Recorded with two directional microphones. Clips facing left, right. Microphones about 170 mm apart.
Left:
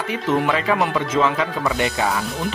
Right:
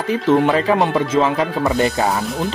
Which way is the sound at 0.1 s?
30° right (ahead or behind).